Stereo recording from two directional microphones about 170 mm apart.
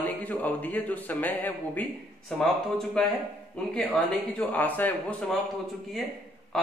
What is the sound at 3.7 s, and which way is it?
A man's voice, 5° left (ahead or behind).